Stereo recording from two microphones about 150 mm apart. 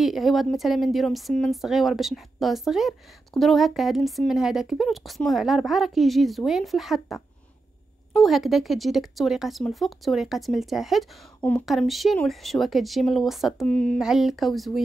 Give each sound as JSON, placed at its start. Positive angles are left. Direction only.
{"t": 0.0, "sound": "a woman's voice", "side_deg": 0}
{"t": 8.2, "sound": "a woman's voice", "side_deg": 0}